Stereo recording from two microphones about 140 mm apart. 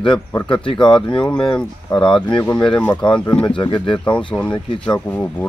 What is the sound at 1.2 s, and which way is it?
Speech, 5° left (ahead or behind).